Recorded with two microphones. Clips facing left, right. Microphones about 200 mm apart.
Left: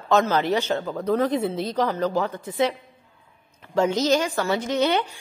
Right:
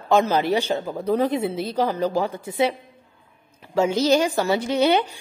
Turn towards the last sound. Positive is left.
turn(degrees=-10)  # may be behind; listen again after turning